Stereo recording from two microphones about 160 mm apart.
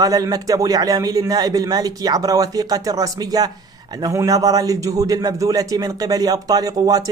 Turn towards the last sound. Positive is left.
turn(degrees=-25)  # may be behind; listen again after turning